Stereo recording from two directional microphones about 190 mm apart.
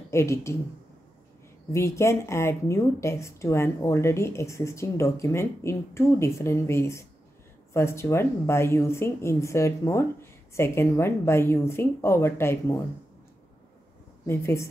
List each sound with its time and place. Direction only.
0.1 s speech: 15° left (ahead or behind)
1.7 s speech: 15° left (ahead or behind)
14.2 s speech: 15° left (ahead or behind)